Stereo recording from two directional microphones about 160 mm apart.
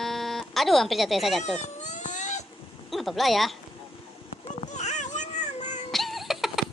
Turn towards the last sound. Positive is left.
turn(degrees=0)  # may be behind; listen again after turning